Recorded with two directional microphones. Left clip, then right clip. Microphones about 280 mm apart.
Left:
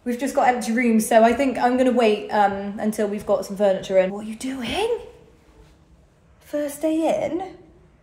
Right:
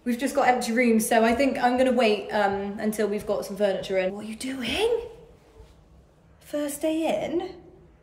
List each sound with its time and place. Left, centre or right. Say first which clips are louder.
0.0 s a woman's voice: left 3 dB; centre
6.4 s a woman's voice: left 3 dB; centre